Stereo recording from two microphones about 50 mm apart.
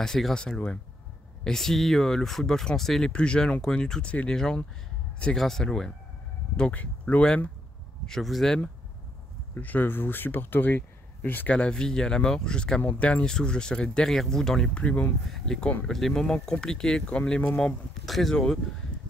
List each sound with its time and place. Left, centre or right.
0.0 s speech: centre
3.1 s speech: centre
6.7 s speech: left
8.1 s speech: centre
9.6 s speech: left
11.5 s speech: centre
12.8 s speech: left
13.2 s speech: centre
14.0 s speech: centre
14.7 s speech: left
15.4 s speech: centre
17.0 s speech: left
18.0 s speech: centre
18.3 s speech: centre